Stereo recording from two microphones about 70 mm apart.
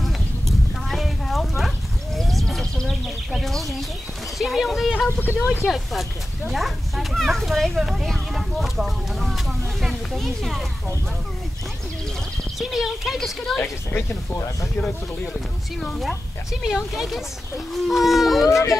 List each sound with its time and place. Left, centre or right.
0.0 s a sound: centre
4.4 s speech: centre
5.2 s speech: left
5.7 s speech: centre
12.5 s speech: centre
13.6 s speech: left
15.8 s speech: centre
18.5 s speech: left